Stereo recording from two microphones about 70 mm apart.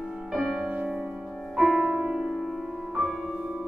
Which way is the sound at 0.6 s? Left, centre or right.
Centre.